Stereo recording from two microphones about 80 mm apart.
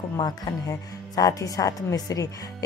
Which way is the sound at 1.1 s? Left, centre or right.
Left.